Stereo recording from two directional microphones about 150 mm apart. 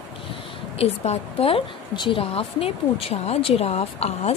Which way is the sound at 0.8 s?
40° left (ahead or behind).